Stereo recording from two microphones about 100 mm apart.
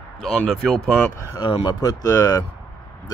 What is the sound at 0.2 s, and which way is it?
Speech, 5° left (ahead or behind).